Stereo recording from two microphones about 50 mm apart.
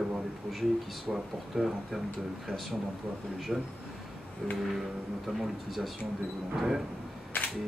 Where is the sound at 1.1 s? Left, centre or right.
Centre.